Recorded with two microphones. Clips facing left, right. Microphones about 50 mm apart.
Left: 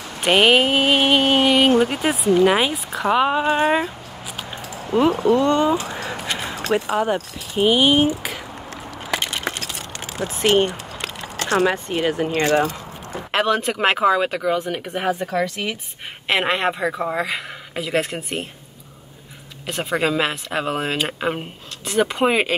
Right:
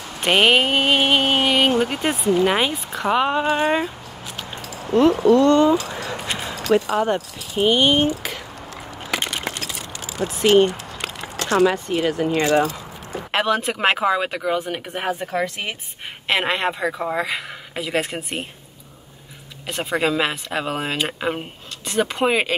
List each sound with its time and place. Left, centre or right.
0.2 s speech: centre
4.9 s speech: centre
7.5 s speech: centre
10.1 s speech: left
13.3 s speech: centre
15.1 s speech: right
16.3 s speech: centre
19.6 s speech: centre